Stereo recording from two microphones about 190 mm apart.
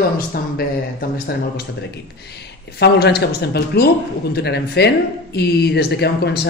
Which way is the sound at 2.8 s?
60° left (ahead or behind).